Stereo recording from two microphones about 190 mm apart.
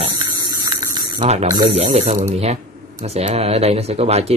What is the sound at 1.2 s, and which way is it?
Speech, 35° right (ahead or behind).